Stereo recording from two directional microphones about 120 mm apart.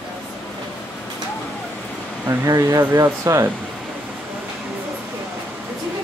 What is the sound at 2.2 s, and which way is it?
Speech, 25° right (ahead or behind).